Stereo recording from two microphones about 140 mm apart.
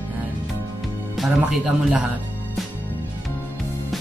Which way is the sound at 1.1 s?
Centre (ahead or behind).